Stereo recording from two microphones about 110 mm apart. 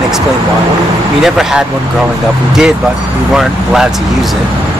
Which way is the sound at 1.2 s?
5° right (ahead or behind).